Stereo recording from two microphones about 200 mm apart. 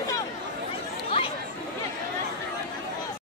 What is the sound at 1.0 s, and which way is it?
Chatter, 25° left (ahead or behind).